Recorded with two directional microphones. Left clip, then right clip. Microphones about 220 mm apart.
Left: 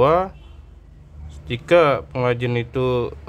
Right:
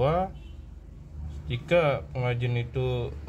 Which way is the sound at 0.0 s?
35° left (ahead or behind).